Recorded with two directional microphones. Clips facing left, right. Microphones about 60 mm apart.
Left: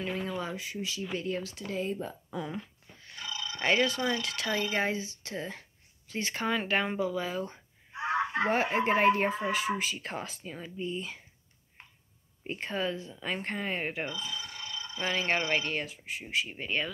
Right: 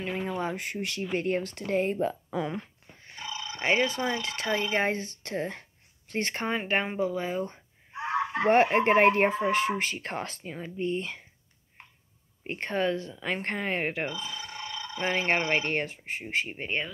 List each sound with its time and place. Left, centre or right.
0.0 s speech: right
3.0 s speech: right
7.0 s speech: right
8.0 s a sound: centre
8.5 s speech: right
12.4 s speech: right